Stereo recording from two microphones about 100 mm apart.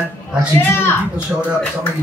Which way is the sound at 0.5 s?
25° left (ahead or behind).